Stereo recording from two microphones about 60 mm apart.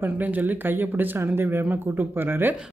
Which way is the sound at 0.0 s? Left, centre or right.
Right.